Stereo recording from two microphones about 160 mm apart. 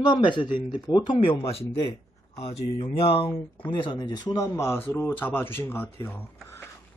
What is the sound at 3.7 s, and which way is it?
Speech, 30° left (ahead or behind).